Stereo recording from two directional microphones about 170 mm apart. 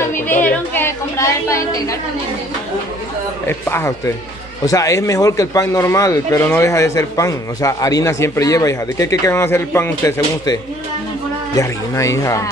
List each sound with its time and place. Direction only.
0.0 s a sound: 15° left (ahead or behind)
0.7 s a woman's voice: 15° left (ahead or behind)
3.4 s a man's voice: 15° left (ahead or behind)